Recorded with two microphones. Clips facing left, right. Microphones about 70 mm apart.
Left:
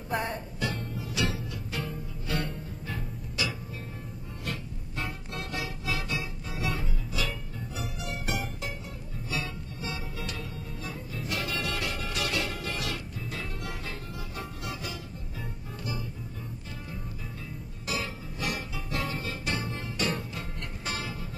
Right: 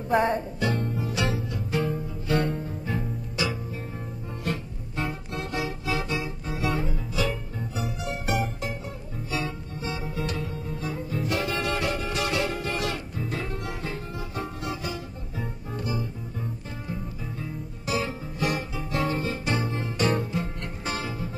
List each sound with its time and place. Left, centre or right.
0.1 s music: right
8.3 s music: right
9.3 s music: right
18.5 s guitar: right
19.0 s music: right
20.3 s music: centre